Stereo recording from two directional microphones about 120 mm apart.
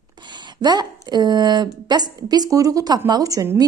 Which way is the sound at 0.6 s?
35° right (ahead or behind).